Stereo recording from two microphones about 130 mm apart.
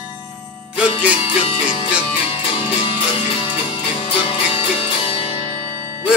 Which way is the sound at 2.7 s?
40° left (ahead or behind).